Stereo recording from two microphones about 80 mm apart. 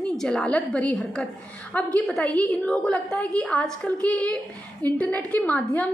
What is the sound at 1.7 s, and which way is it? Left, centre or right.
Speech, centre.